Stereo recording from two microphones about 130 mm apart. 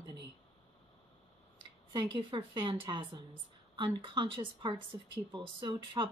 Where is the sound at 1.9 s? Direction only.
40° right (ahead or behind).